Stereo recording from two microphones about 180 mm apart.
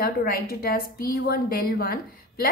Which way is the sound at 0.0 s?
55° left (ahead or behind).